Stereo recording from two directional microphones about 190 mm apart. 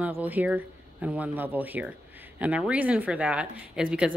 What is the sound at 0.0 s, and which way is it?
Speech, 10° right (ahead or behind).